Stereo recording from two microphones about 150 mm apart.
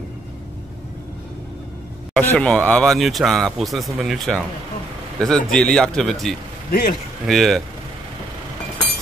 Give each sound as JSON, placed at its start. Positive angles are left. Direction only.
{"t": 2.1, "sound": "speech", "side_deg": 5}
{"t": 6.7, "sound": "a man's voice", "side_deg": 70}
{"t": 7.2, "sound": "speech", "side_deg": 0}